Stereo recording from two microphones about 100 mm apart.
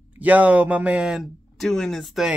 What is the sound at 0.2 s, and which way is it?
Speech, 15° right (ahead or behind).